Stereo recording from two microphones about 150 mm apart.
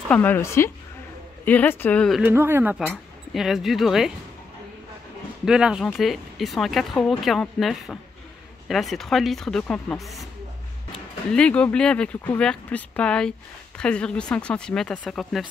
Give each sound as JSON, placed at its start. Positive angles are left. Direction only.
{"t": 0.1, "sound": "speech", "side_deg": 10}
{"t": 2.2, "sound": "speech", "side_deg": -15}
{"t": 5.4, "sound": "speech", "side_deg": -5}